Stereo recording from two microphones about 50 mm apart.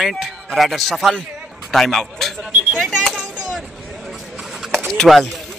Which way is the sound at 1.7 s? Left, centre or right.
Centre.